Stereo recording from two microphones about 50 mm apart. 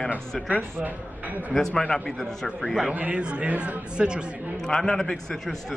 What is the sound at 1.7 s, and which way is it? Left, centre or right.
Speech, centre.